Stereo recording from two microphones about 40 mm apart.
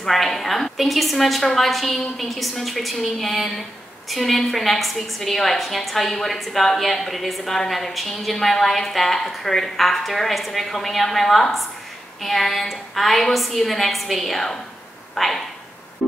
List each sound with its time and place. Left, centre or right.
0.0 s a woman's voice: centre
16.0 s music: centre